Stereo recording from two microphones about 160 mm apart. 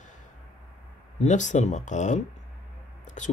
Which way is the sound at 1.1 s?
50° left (ahead or behind).